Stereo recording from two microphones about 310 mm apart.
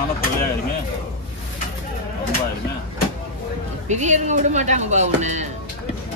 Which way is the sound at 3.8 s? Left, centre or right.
Right.